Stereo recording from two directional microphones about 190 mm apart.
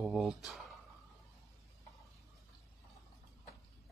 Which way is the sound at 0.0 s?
Centre (ahead or behind).